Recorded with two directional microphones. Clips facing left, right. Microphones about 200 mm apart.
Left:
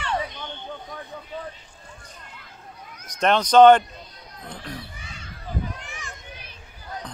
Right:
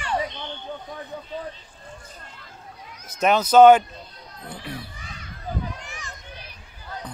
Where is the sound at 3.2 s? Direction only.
5° right (ahead or behind).